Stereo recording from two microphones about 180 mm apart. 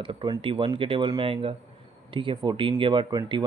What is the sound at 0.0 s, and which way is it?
Speech, 25° right (ahead or behind).